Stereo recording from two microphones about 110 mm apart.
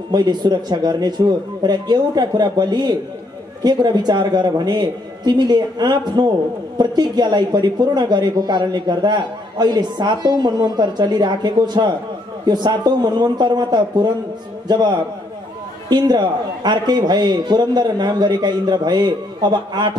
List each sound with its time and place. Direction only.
0.1 s a man's voice: 40° right (ahead or behind)